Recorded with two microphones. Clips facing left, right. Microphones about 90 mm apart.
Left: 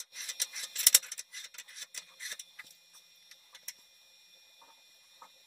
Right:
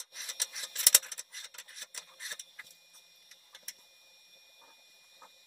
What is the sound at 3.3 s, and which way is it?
Vehicle, 40° right (ahead or behind).